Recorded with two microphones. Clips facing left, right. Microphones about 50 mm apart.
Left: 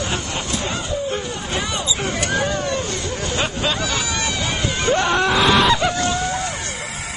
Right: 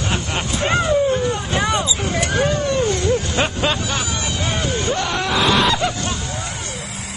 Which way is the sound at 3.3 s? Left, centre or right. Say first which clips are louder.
Right 2 dB; centre.